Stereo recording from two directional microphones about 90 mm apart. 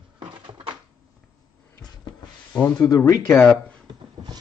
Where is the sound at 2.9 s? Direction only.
40° left (ahead or behind).